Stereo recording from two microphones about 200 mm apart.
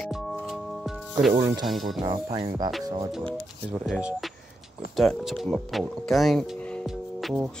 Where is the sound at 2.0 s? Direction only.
20° right (ahead or behind).